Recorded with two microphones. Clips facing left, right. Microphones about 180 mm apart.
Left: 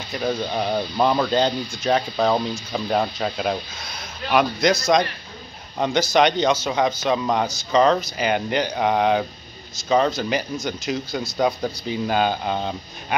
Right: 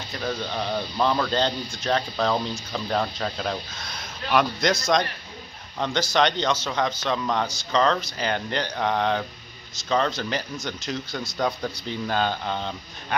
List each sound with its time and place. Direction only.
0.1 s speech: 15° left (ahead or behind)
5.8 s speech: 10° left (ahead or behind)